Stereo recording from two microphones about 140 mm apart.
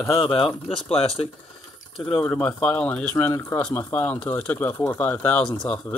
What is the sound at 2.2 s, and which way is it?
Speech, 10° left (ahead or behind).